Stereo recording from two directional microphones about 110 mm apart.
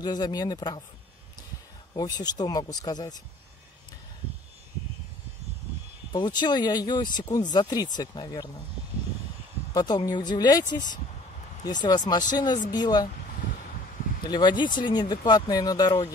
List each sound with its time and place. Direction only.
0.0 s speech: 40° left (ahead or behind)
2.0 s speech: 35° left (ahead or behind)
6.1 s speech: 40° left (ahead or behind)
9.8 s speech: 35° left (ahead or behind)
14.2 s speech: 40° left (ahead or behind)